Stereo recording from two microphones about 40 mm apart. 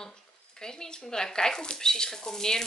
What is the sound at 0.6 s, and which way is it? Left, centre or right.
Speech, centre.